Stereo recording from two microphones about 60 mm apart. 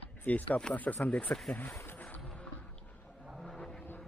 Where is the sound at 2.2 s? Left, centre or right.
Centre.